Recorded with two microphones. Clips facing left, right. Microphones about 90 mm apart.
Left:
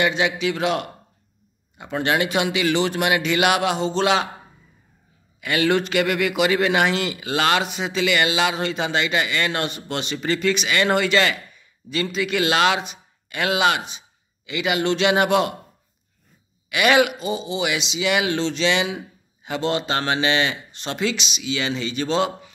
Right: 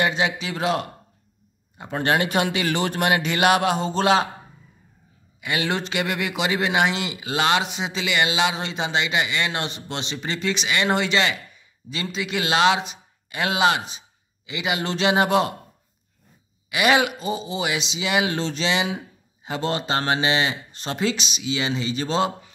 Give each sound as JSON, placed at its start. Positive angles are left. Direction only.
{"t": 0.0, "sound": "speech", "side_deg": -30}
{"t": 5.4, "sound": "a man's voice", "side_deg": -25}
{"t": 14.8, "sound": "speech", "side_deg": -35}
{"t": 16.6, "sound": "speech", "side_deg": -25}
{"t": 18.7, "sound": "speech", "side_deg": -25}
{"t": 21.5, "sound": "speech", "side_deg": -25}